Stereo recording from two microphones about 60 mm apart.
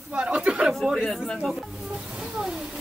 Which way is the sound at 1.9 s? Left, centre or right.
Centre.